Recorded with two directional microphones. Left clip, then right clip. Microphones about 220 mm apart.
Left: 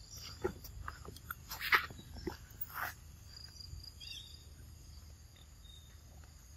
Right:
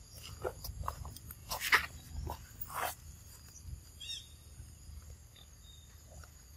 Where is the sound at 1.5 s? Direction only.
20° right (ahead or behind).